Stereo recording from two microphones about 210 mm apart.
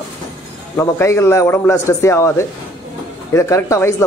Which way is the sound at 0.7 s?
10° left (ahead or behind).